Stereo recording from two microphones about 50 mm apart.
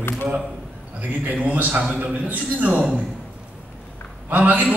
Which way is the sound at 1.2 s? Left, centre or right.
Right.